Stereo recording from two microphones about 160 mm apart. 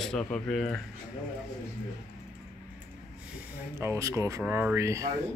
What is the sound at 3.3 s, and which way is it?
Speech, 15° right (ahead or behind).